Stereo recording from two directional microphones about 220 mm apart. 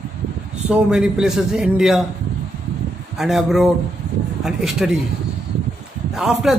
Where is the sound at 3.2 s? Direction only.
Centre (ahead or behind).